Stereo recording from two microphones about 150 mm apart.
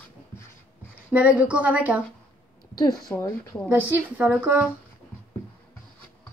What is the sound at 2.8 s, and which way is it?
Speech, 25° left (ahead or behind).